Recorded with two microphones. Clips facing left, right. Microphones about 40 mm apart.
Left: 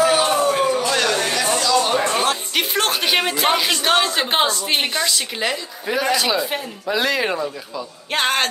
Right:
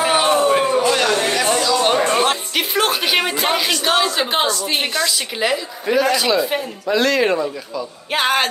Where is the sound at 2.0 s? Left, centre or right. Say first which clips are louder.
Right 3 dB; right.